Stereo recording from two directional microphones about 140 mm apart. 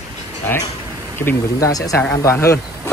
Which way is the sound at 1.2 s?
20° left (ahead or behind).